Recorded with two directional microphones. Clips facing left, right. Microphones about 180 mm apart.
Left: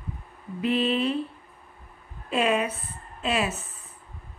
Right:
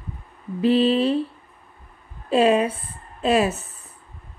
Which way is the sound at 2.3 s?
30° right (ahead or behind).